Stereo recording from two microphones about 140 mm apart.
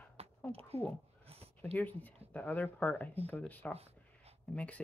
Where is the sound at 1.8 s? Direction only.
10° left (ahead or behind).